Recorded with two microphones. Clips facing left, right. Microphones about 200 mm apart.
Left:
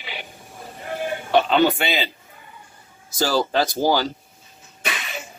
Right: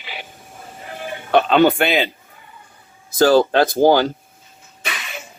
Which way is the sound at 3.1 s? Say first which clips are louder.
Right 7 dB; 55° right (ahead or behind).